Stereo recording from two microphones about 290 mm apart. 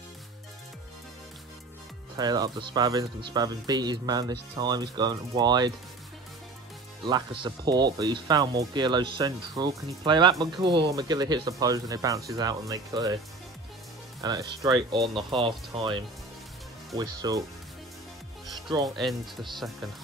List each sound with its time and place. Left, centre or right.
2.1 s speech: centre
7.1 s speech: centre
14.2 s speech: centre
15.0 s speech: centre
15.4 s speech: centre
17.2 s speech: centre
18.5 s music: centre
18.9 s speech: centre